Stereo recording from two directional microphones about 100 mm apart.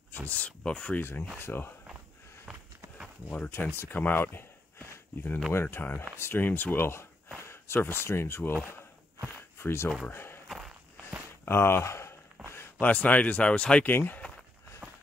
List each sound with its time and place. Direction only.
0.3 s speech: 10° left (ahead or behind)
2.5 s walk: 5° right (ahead or behind)
3.3 s speech: 15° left (ahead or behind)
9.6 s speech: 25° left (ahead or behind)
11.4 s speech: 25° left (ahead or behind)
12.5 s speech: 15° left (ahead or behind)